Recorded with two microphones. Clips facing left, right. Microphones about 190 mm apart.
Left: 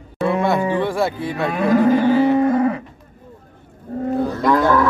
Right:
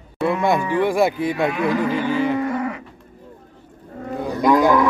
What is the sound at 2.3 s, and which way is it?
Livestock, 35° left (ahead or behind).